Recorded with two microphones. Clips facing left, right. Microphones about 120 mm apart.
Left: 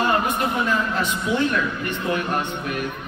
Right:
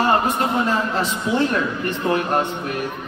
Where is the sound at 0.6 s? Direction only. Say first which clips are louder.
Right 2 dB; 35° right (ahead or behind).